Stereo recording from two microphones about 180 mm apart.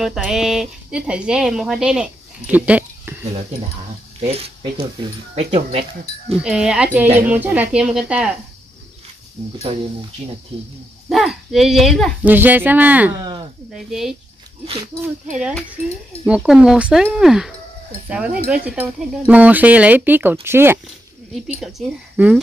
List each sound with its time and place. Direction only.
0.0 s speech: centre (ahead or behind)
4.3 s speech: 35° right (ahead or behind)
6.4 s speech: 5° right (ahead or behind)
11.1 s speech: centre (ahead or behind)
16.3 s speech: 5° right (ahead or behind)
21.5 s speech: centre (ahead or behind)